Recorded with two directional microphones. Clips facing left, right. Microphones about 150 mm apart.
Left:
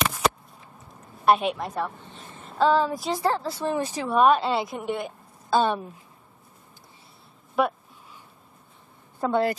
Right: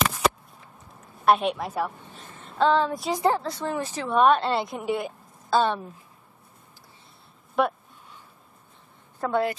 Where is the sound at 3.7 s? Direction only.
15° left (ahead or behind); by 5.1 s centre (ahead or behind).